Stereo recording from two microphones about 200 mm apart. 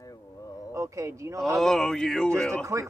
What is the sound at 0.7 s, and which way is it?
Speech, 15° right (ahead or behind).